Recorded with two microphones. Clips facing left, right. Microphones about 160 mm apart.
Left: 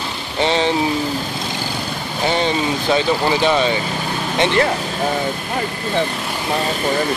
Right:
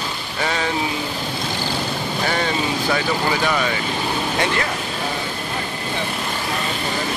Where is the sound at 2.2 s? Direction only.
20° left (ahead or behind).